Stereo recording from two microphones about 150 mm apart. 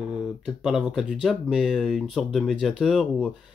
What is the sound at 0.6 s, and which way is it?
Speech, 5° right (ahead or behind).